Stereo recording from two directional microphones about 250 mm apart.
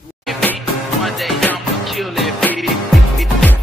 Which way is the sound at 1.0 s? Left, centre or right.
Centre.